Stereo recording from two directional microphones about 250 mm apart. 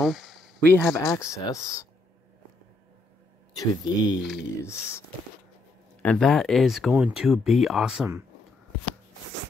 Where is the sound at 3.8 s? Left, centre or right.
Centre.